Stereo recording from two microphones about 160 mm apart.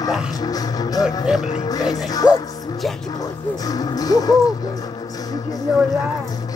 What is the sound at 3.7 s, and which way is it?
Music, 25° left (ahead or behind).